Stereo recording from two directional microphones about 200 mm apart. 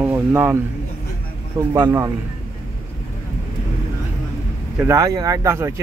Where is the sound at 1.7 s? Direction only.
20° right (ahead or behind).